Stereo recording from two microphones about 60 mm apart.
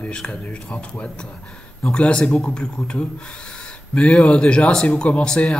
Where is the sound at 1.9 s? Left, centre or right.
Centre.